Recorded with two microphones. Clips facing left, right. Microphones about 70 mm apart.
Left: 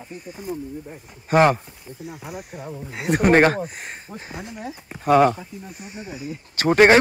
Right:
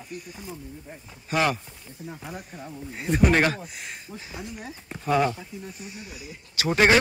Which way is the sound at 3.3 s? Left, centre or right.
Left.